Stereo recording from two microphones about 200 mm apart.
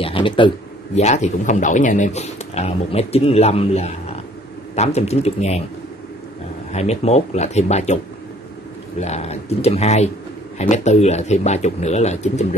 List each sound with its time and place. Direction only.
0.0 s a sound: 25° left (ahead or behind)
0.9 s speech: 35° left (ahead or behind)
6.7 s speech: 35° left (ahead or behind)
9.0 s speech: 35° left (ahead or behind)